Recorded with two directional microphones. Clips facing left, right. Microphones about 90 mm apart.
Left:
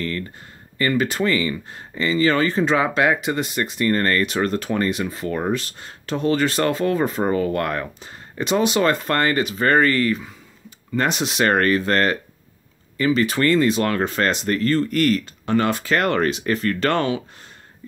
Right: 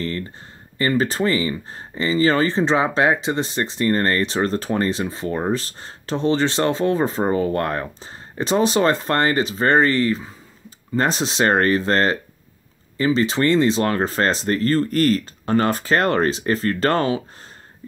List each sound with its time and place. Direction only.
0.7 s speech: 30° right (ahead or behind)